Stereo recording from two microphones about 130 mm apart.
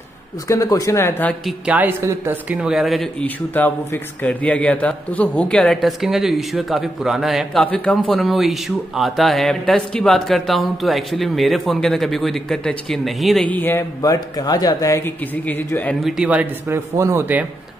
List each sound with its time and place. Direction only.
0.5 s speech: 25° left (ahead or behind)
1.7 s speech: 15° right (ahead or behind)
7.6 s speech: 10° left (ahead or behind)
13.5 s speech: 15° left (ahead or behind)
14.0 s speech: 30° left (ahead or behind)
15.3 s speech: 15° left (ahead or behind)
16.0 s speech: 5° right (ahead or behind)
16.6 s speech: 20° right (ahead or behind)